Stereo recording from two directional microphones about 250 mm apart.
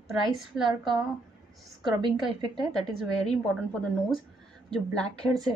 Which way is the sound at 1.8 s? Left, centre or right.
Centre.